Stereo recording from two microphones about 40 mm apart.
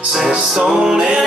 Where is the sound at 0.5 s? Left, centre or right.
Centre.